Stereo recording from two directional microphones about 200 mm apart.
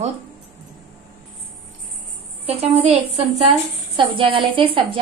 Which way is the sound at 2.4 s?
30° right (ahead or behind).